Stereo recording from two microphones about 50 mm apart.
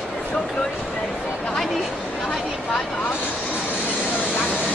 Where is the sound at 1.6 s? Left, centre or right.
Centre.